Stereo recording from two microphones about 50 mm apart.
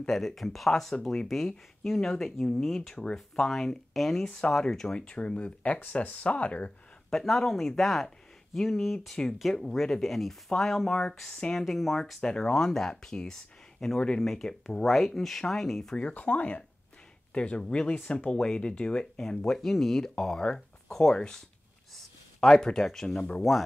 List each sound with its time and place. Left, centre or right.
0.0 s speech: centre
3.0 s speech: centre
3.4 s speech: centre
4.3 s speech: centre
7.1 s speech: centre
11.1 s speech: centre
11.5 s speech: centre
12.2 s speech: centre
16.0 s speech: left; by 23.6 s centre